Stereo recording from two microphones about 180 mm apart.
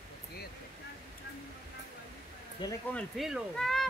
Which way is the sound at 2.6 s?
25° left (ahead or behind).